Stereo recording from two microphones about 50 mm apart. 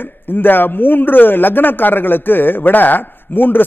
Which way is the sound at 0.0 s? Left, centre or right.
Left.